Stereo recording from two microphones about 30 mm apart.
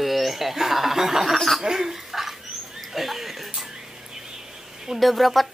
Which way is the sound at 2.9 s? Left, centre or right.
Centre.